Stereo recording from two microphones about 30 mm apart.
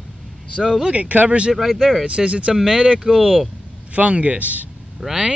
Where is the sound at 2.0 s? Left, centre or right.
Right.